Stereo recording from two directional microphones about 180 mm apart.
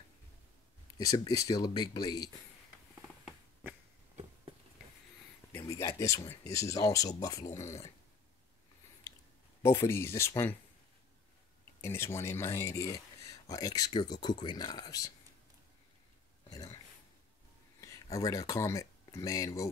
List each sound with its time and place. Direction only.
0.9 s speech: 20° left (ahead or behind)
5.6 s speech: 20° left (ahead or behind)
9.6 s speech: 15° left (ahead or behind)
11.8 s speech: 15° left (ahead or behind)
16.4 s a sound: 20° left (ahead or behind)
17.7 s speech: 15° left (ahead or behind)